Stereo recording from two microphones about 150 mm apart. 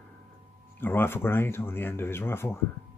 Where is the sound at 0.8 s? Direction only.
15° left (ahead or behind).